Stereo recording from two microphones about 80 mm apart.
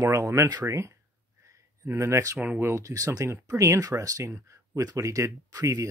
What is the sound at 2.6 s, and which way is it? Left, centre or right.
Speech, right.